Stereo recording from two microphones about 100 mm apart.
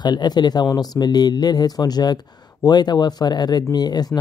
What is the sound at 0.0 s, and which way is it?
Speech, 45° left (ahead or behind).